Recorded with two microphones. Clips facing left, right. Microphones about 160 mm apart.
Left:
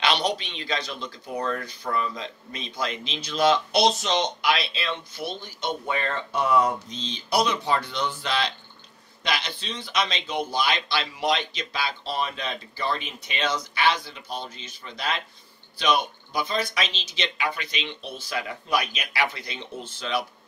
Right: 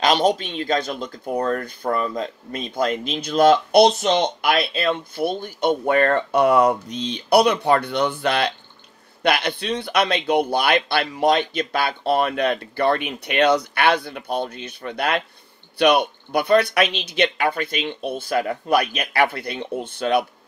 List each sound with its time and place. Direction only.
0.0 s speech: 45° right (ahead or behind)